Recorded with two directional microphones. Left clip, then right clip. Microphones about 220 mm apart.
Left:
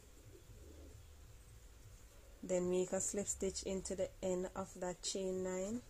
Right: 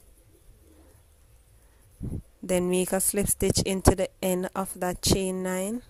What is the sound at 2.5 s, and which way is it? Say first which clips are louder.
Speech: right 12 dB; 35° right (ahead or behind).